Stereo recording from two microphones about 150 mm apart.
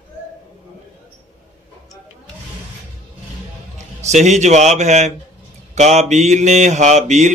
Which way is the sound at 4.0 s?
50° right (ahead or behind).